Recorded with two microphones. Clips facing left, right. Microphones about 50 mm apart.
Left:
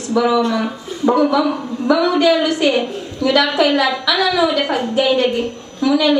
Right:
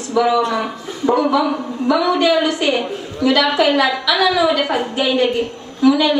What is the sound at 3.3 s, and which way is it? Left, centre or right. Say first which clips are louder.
A woman's voice: left 1 dB; centre.